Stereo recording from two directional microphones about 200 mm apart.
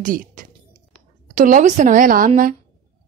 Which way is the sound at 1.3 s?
40° right (ahead or behind).